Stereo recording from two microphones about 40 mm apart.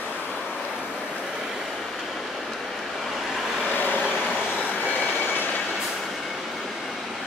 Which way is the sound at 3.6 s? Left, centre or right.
Left.